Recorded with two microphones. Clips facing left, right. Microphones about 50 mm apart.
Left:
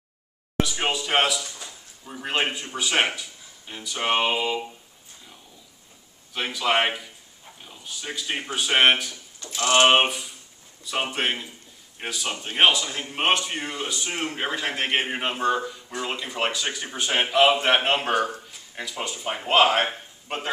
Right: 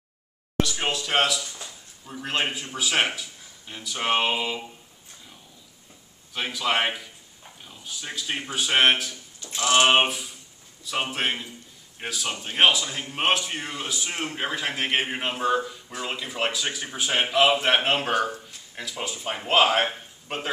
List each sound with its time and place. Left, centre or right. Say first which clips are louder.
0.7 s a man's voice: left 1 dB; centre
6.3 s a man's voice: left 2 dB; centre
9.4 s a sound: left 1 dB; left
9.8 s a man's voice: left 1 dB; centre